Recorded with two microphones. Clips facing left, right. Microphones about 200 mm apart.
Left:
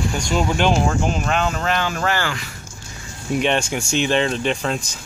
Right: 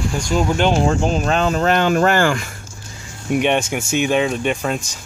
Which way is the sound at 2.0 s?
50° right (ahead or behind).